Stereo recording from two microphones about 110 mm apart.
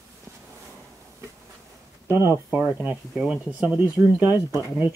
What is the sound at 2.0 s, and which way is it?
Speech, 20° right (ahead or behind).